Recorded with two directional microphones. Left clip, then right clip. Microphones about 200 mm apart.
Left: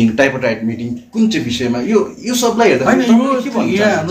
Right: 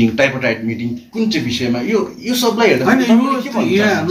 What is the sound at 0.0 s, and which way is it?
A man's voice, 55° left (ahead or behind).